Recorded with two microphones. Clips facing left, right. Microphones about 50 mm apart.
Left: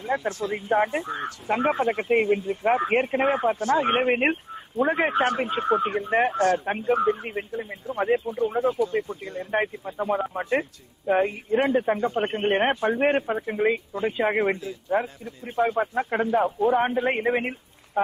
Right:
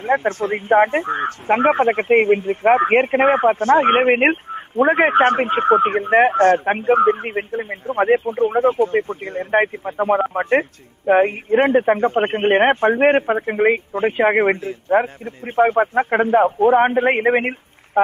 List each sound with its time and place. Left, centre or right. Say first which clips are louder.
0.0 s speech: right 8 dB; right